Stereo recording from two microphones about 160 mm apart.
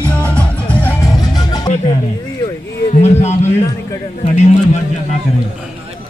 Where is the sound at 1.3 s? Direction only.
25° left (ahead or behind).